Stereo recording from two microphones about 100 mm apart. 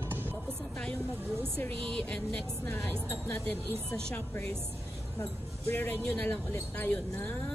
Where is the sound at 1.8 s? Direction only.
10° left (ahead or behind).